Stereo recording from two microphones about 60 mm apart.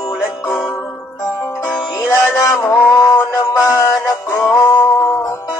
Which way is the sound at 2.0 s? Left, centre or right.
Left.